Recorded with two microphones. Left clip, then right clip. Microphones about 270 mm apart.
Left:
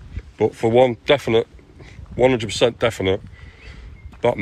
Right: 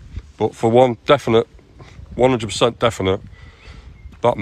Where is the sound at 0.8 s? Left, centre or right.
Right.